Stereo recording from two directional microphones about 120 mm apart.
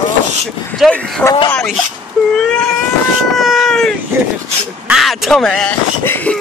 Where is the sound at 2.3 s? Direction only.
5° left (ahead or behind).